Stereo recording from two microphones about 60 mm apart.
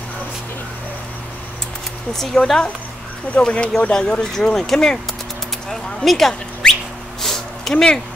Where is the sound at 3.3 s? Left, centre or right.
Centre.